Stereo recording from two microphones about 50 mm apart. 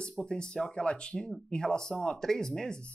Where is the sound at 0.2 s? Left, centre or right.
Centre.